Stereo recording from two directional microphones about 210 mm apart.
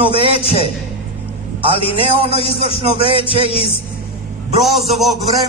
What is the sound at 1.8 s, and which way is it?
Speech, 25° left (ahead or behind).